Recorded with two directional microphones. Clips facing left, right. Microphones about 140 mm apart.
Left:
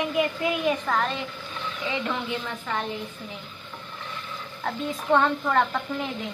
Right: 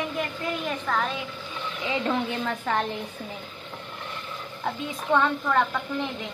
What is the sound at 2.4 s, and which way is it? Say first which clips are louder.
Speech: right 4 dB; 55° right (ahead or behind).